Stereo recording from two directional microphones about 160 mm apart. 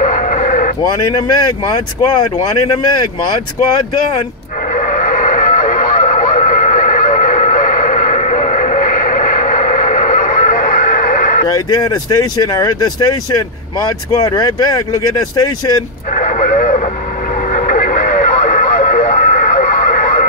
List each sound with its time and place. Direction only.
0.0 s a sound: 50° left (ahead or behind)
2.7 s speech: 25° left (ahead or behind)
4.7 s vehicle: 55° left (ahead or behind)
11.4 s speech: 25° left (ahead or behind)
16.2 s speech: 50° left (ahead or behind)
17.5 s radio: 50° left (ahead or behind)